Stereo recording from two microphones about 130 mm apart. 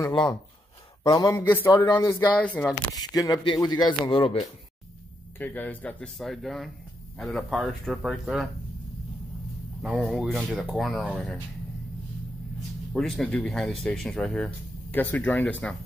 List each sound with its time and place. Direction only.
0.0 s speech: 35° left (ahead or behind)
1.3 s speech: 15° left (ahead or behind)
3.0 s speech: 30° left (ahead or behind)
5.4 s speech: 15° left (ahead or behind)
9.8 s speech: 5° right (ahead or behind)
12.9 s speech: 5° left (ahead or behind)